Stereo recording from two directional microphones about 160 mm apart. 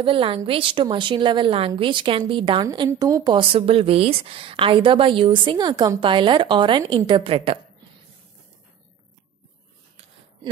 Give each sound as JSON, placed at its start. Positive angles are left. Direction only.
{"t": 0.0, "sound": "a woman's voice", "side_deg": -35}
{"t": 3.3, "sound": "a woman's voice", "side_deg": -35}